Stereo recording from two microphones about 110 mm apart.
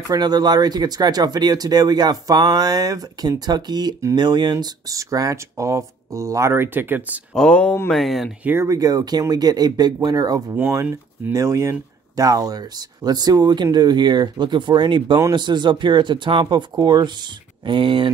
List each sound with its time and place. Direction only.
0.1 s speech: 40° right (ahead or behind); by 7.2 s 15° right (ahead or behind)
7.3 s speech: 10° left (ahead or behind)
8.5 s speech: 20° right (ahead or behind)
8.7 s speech: 35° right (ahead or behind)
10.5 s speech: 20° right (ahead or behind); by 18.1 s 50° right (ahead or behind)